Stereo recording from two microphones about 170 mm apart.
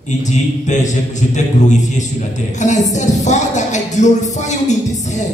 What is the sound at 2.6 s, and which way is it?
Speech, 45° left (ahead or behind).